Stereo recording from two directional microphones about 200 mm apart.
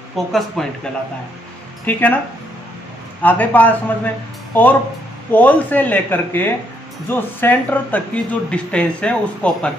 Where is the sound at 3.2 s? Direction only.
10° left (ahead or behind).